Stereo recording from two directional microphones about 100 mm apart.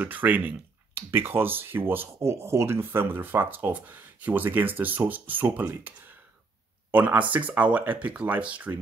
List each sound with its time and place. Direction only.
0.0 s speech: 15° right (ahead or behind)